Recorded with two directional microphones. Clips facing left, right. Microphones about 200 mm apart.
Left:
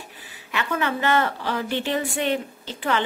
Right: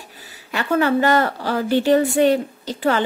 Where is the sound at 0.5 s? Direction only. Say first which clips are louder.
Right 7 dB; 40° right (ahead or behind).